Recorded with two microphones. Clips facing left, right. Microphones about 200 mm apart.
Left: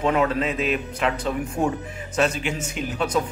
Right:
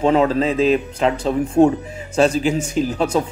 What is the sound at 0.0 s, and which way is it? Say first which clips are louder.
Speech: right 6 dB; 30° right (ahead or behind).